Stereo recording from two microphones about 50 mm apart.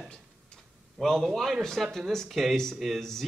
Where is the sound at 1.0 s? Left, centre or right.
Centre.